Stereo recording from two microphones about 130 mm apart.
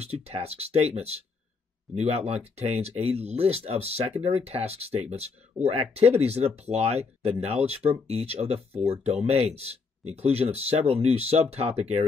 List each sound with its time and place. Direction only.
0.0 s speech: 55° right (ahead or behind)